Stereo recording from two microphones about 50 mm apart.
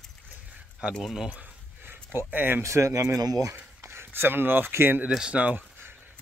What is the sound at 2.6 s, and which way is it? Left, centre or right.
Speech, right.